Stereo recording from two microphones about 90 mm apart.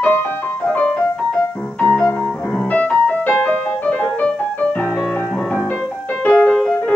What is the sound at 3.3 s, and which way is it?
Music, 20° left (ahead or behind).